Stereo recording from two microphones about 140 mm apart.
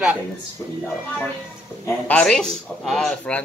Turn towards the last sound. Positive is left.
turn(degrees=5)  # may be behind; listen again after turning